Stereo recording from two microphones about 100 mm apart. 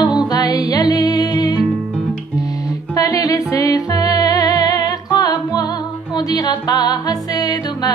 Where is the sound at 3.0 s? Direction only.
35° left (ahead or behind).